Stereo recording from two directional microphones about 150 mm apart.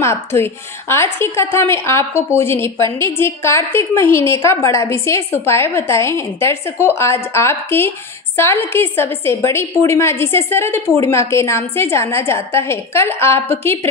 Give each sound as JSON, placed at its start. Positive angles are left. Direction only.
{"t": 0.0, "sound": "a woman's voice", "side_deg": 15}